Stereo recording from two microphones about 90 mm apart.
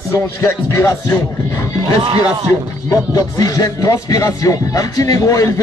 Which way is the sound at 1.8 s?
85° right.